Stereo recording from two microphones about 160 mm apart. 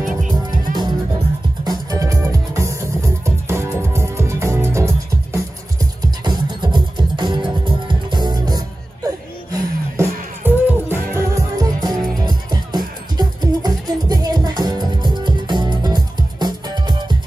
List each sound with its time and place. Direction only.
0.7 s music: 60° right (ahead or behind)
1.6 s music: 25° right (ahead or behind)